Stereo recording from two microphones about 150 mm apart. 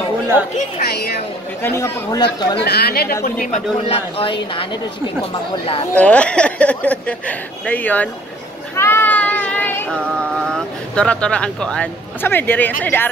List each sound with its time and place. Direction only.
0.7 s speech: 90° left
1.6 s speech: 15° left (ahead or behind)
2.6 s speech: 90° left
3.8 s speech: 40° left (ahead or behind)
5.9 s speech: 10° left (ahead or behind)
8.7 s child singing: 15° left (ahead or behind)
12.8 s speech: 15° left (ahead or behind)